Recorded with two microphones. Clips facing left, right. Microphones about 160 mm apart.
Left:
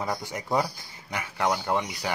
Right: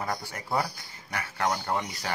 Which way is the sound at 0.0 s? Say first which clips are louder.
Left 2 dB; 15° left (ahead or behind).